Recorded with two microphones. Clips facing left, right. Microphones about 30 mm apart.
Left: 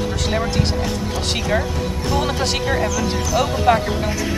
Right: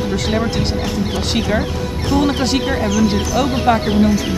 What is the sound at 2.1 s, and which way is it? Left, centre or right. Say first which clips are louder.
Speech: right 6 dB; centre.